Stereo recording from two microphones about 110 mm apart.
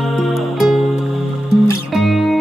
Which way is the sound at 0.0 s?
Centre (ahead or behind).